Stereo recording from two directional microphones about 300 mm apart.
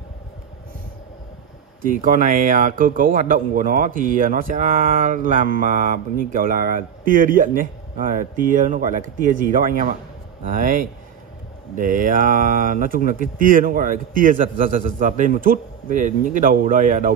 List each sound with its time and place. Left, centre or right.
1.8 s speech: right